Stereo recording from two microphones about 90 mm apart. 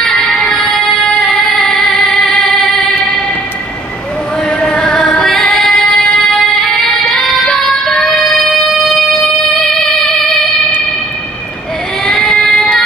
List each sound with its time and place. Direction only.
0.0 s music: 5° left (ahead or behind)
1.4 s female singing: centre (ahead or behind)
2.1 s singing: 15° left (ahead or behind)
4.5 s music: 10° left (ahead or behind)
5.2 s female singing: centre (ahead or behind)
6.5 s child singing: 10° left (ahead or behind)
8.0 s music: centre (ahead or behind)
12.1 s child singing: 10° left (ahead or behind)